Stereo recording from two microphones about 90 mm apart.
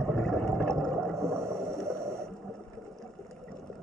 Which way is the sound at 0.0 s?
10° left (ahead or behind).